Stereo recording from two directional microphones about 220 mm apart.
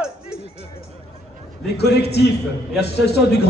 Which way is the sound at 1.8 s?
50° left (ahead or behind).